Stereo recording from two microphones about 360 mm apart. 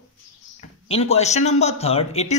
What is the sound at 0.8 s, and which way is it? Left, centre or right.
Speech, centre.